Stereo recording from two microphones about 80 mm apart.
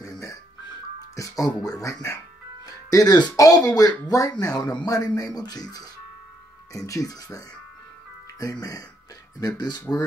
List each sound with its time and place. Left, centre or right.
0.0 s music: left
1.1 s speech: left
2.6 s music: left
3.3 s speech: left
6.9 s speech: left
8.4 s speech: left